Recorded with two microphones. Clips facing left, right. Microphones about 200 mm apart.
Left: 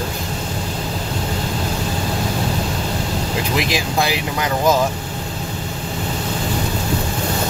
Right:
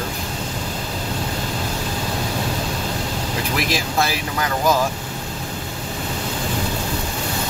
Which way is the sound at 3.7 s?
15° left (ahead or behind).